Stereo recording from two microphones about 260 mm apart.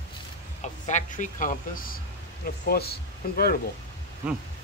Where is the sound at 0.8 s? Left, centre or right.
Left.